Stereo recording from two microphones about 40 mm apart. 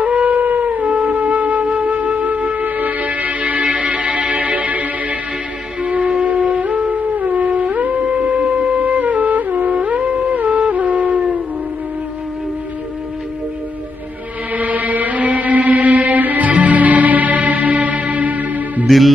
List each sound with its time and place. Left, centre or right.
0.0 s wind instrument: right
5.8 s music: right
14.5 s music: right
18.9 s music: centre